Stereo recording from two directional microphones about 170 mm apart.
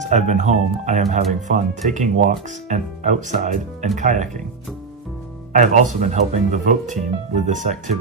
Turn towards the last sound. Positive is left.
turn(degrees=-45)  # may be behind; listen again after turning